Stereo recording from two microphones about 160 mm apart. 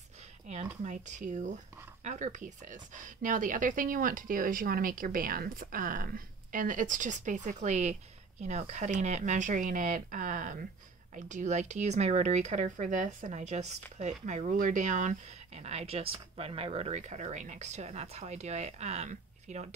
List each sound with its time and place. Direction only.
0.5 s speech: 50° right (ahead or behind)